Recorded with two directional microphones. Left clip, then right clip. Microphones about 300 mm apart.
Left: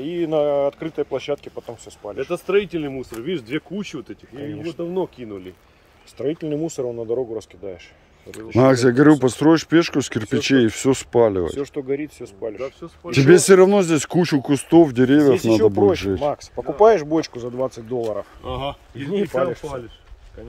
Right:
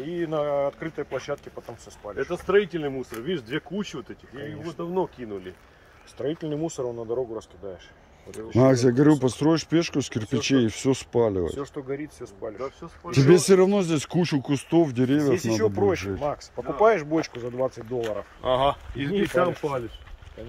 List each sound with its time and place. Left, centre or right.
0.0 s speech: left
8.5 s speech: centre
11.5 s speech: left
13.3 s speech: centre
15.2 s speech: left
17.4 s speech: left
18.4 s speech: centre
18.9 s speech: left